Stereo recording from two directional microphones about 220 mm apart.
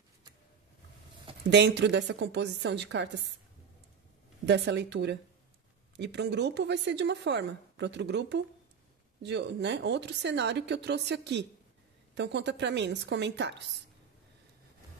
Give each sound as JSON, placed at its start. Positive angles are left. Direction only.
{"t": 1.5, "sound": "speech", "side_deg": -50}
{"t": 4.5, "sound": "speech", "side_deg": -50}